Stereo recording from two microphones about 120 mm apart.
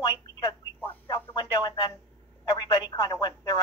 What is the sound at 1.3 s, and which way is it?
Speech, 40° left (ahead or behind).